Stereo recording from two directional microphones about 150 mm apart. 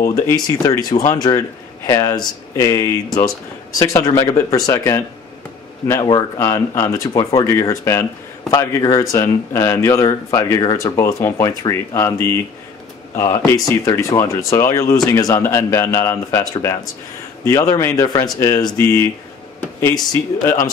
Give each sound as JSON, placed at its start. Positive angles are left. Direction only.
{"t": 0.1, "sound": "speech", "side_deg": 20}
{"t": 6.0, "sound": "speech", "side_deg": 25}
{"t": 7.2, "sound": "speech", "side_deg": 35}
{"t": 7.4, "sound": "speech", "side_deg": 20}